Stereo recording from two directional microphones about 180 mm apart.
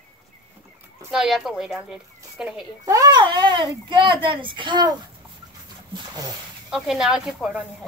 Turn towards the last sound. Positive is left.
turn(degrees=0)  # may be behind; listen again after turning